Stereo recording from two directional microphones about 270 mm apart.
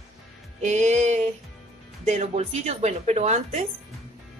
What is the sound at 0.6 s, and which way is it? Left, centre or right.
Speech, right.